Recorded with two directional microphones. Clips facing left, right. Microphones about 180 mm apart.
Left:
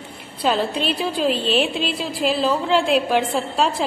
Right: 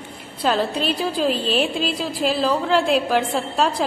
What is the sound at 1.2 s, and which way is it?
Speech, 40° right (ahead or behind).